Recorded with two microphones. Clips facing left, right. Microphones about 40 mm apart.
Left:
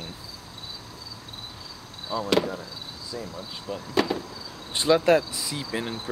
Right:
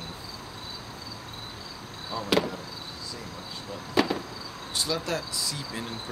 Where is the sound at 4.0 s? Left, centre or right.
Centre.